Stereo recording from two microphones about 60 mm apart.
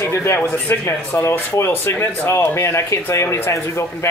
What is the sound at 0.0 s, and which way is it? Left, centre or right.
Speech, left.